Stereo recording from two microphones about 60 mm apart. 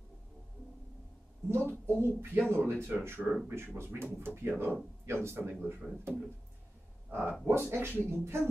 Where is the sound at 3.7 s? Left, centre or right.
Right.